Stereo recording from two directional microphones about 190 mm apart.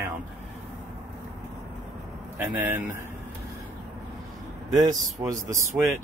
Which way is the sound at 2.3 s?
10° right (ahead or behind).